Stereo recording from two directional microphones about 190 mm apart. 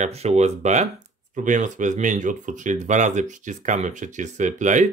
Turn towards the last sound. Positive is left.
turn(degrees=-40)  # may be behind; listen again after turning